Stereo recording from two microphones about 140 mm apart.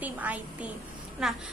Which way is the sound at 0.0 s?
10° right (ahead or behind).